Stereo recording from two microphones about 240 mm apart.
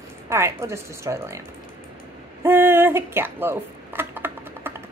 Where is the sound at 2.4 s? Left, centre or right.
Centre.